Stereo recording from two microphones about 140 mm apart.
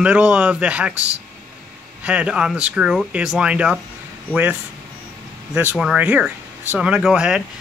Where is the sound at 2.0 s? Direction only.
10° right (ahead or behind).